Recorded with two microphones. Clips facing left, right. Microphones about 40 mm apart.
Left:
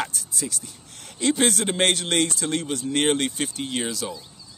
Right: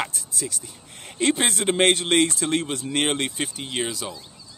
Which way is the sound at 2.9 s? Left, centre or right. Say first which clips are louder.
Left 2 dB; centre.